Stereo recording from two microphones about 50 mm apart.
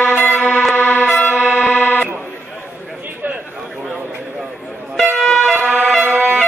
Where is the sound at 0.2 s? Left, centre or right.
Left.